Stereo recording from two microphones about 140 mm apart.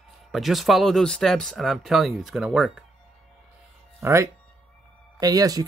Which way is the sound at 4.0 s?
20° right (ahead or behind).